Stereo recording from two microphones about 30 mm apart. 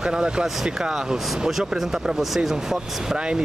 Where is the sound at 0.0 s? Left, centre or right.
Right.